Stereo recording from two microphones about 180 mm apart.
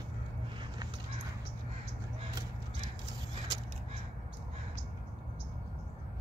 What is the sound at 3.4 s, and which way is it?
Vehicle, 20° right (ahead or behind).